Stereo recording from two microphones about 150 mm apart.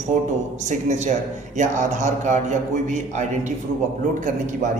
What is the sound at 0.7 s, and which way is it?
A man's voice, 50° right (ahead or behind).